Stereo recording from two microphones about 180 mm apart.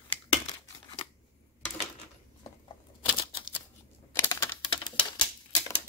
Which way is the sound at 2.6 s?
30° left (ahead or behind).